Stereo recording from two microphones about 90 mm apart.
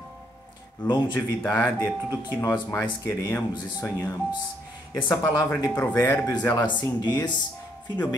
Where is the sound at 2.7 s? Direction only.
25° left (ahead or behind).